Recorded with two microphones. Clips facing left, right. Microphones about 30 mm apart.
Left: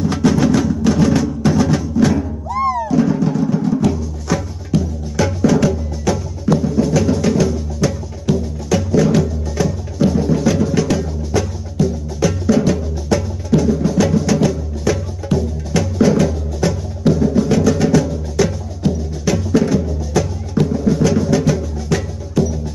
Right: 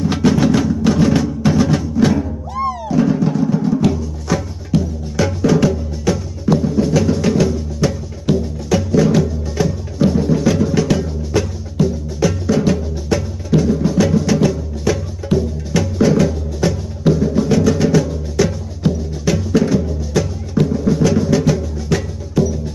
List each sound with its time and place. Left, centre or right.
0.1 s music: centre
8.3 s music: right
8.7 s music: centre